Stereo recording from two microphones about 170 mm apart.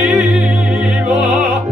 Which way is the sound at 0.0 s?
5° right (ahead or behind).